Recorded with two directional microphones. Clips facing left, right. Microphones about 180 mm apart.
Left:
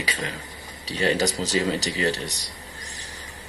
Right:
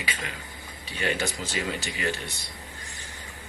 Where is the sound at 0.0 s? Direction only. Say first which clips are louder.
Left 5 dB; 40° left (ahead or behind).